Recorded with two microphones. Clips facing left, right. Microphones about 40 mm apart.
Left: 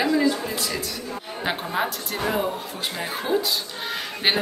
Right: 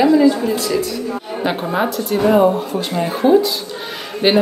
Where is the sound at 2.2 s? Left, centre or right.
Right.